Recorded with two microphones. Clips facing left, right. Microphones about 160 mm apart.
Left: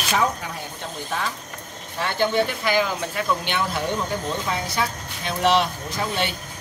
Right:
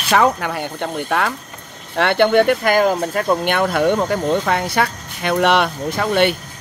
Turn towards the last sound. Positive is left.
turn(degrees=-60)  # may be behind; listen again after turning